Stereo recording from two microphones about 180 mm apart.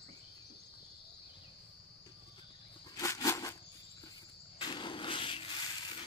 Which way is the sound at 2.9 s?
20° left (ahead or behind).